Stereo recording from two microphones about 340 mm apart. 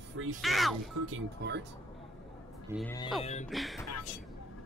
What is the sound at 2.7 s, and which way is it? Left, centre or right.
Speech, centre.